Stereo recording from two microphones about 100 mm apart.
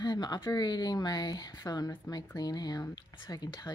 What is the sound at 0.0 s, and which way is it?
Speech, 45° left (ahead or behind).